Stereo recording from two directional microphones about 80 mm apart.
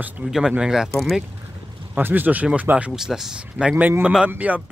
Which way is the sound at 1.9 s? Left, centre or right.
Right.